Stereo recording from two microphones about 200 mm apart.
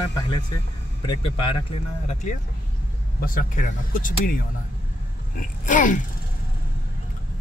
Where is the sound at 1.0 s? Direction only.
25° left (ahead or behind).